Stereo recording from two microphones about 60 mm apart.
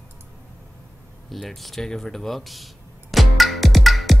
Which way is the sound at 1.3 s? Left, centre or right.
Centre.